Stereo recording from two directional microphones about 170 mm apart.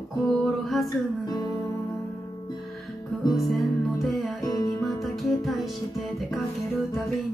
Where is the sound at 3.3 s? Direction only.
Centre (ahead or behind).